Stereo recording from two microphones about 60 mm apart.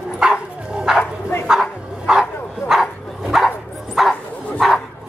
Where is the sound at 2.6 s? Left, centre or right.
Left.